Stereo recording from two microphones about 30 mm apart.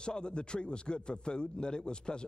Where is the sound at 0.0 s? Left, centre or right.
Left.